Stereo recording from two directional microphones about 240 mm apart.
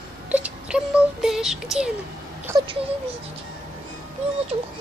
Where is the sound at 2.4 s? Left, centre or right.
Centre.